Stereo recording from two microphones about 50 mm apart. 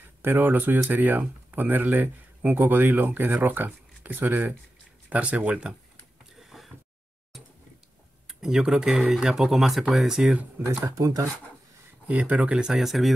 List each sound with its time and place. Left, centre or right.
0.2 s speech: right
6.4 s a sound: centre
8.3 s speech: centre
10.6 s speech: right
12.1 s speech: right; by 13.1 s centre